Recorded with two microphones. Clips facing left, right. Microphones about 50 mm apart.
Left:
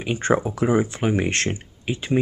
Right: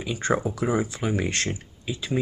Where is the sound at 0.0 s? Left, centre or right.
Left.